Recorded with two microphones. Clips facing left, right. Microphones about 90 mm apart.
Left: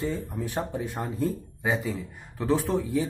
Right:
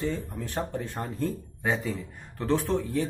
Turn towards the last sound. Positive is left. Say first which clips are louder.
# left 1 dB
turn(degrees=10)  # may be behind; listen again after turning